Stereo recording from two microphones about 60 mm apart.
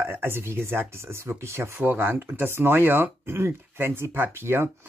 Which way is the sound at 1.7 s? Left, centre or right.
Right.